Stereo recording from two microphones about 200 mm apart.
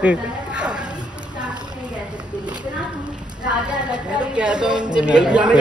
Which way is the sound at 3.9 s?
5° right (ahead or behind).